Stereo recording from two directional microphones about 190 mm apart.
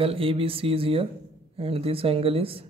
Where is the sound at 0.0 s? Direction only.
30° right (ahead or behind).